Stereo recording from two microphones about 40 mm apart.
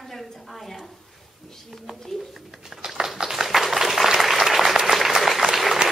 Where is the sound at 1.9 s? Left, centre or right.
Centre.